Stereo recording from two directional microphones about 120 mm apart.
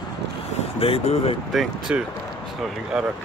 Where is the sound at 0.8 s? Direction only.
55° left (ahead or behind).